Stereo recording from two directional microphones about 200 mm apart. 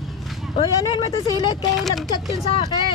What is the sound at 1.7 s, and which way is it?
Speech, centre (ahead or behind).